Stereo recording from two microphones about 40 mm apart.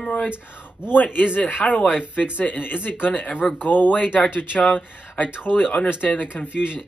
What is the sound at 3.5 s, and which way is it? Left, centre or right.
Speech, left.